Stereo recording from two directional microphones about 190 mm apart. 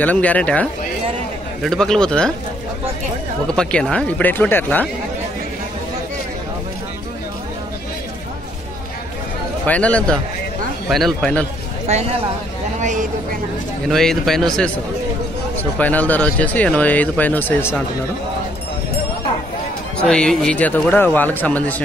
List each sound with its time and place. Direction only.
0.0 s speech: 10° left (ahead or behind)
3.4 s speech: 5° left (ahead or behind)
9.7 s speech: 5° left (ahead or behind)
11.9 s speech: 35° right (ahead or behind)
13.8 s speech: centre (ahead or behind)
20.1 s speech: 5° left (ahead or behind)